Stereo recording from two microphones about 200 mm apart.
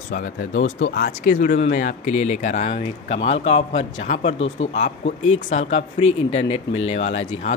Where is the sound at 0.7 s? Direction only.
60° left (ahead or behind).